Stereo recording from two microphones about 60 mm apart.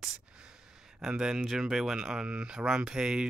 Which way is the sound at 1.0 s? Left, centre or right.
Centre.